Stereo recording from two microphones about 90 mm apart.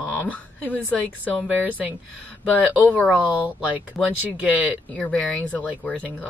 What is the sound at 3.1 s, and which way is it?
Speech, 15° right (ahead or behind).